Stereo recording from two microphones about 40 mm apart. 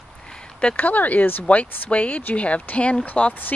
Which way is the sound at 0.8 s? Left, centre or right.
Left.